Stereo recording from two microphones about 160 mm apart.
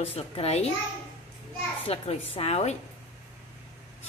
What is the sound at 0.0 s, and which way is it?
Speech, 40° left (ahead or behind).